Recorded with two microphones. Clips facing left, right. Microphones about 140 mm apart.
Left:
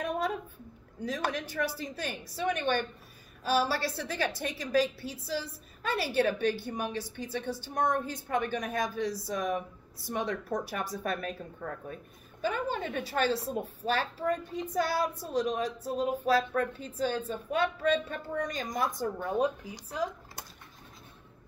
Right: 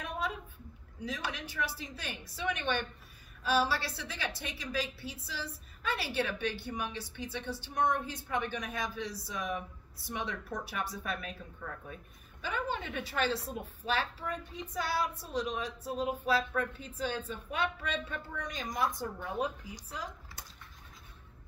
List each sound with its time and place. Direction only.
1.0 s a woman's voice: 45° left (ahead or behind)